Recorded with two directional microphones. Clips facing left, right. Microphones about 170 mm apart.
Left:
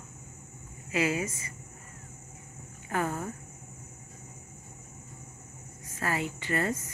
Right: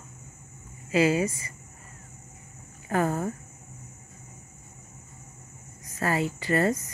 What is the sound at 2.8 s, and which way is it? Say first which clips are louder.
Speech: right 5 dB; 40° right (ahead or behind).